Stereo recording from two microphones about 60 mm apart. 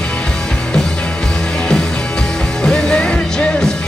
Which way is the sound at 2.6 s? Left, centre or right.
Centre.